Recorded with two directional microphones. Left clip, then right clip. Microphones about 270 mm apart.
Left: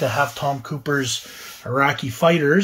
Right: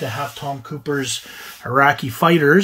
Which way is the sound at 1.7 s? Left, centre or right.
Centre.